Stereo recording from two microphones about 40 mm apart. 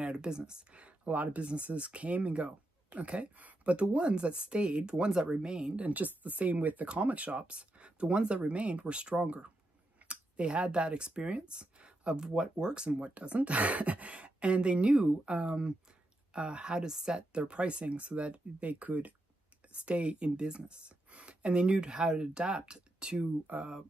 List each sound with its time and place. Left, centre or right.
0.0 s speech: right
1.1 s speech: right
1.4 s speech: right
5.8 s speech: right; by 17.4 s centre
17.4 s speech: right
19.7 s speech: right
23.4 s speech: right